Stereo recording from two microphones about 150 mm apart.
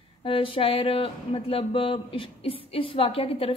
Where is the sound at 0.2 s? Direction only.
35° left (ahead or behind).